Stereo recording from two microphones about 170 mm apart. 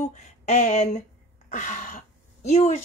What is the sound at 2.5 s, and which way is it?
Speech, 40° left (ahead or behind).